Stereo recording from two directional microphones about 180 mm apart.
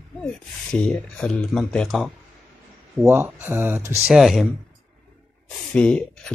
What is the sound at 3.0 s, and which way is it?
Speech, 15° right (ahead or behind).